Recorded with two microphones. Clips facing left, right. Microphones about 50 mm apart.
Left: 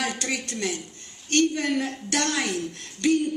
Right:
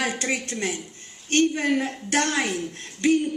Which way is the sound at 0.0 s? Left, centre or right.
Centre.